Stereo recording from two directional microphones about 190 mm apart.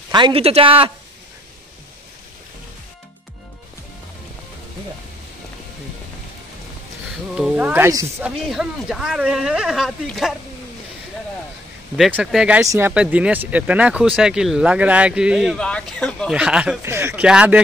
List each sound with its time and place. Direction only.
0.1 s speech: 25° right (ahead or behind)
7.3 s speech: 5° right (ahead or behind)
8.2 s speech: 5° right (ahead or behind)
12.0 s speech: 5° right (ahead or behind)